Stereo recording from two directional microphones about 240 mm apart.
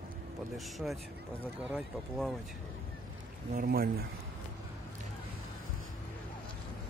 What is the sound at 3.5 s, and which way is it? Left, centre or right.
Speech, right.